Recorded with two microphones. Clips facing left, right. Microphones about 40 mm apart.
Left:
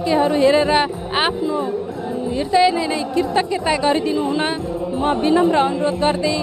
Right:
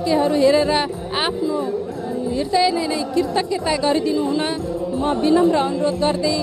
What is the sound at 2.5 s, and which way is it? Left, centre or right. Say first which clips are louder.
A woman's voice: left 3 dB; left.